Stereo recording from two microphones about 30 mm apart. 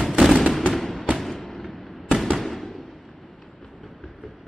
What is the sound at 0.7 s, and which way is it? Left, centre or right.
Fireworks, centre.